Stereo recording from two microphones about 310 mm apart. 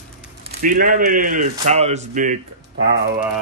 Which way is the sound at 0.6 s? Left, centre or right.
Right.